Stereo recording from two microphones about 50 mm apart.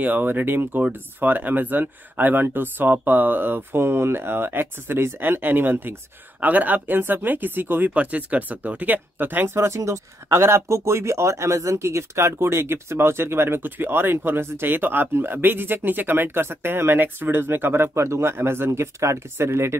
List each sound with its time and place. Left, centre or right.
0.0 s speech: right
6.4 s speech: right
9.5 s speech: right
17.9 s speech: right
18.7 s speech: right